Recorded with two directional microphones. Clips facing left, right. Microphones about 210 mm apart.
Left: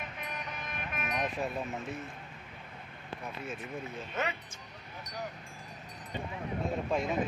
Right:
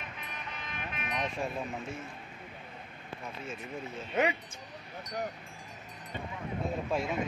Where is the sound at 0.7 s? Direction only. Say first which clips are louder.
Left 1 dB; 45° left (ahead or behind).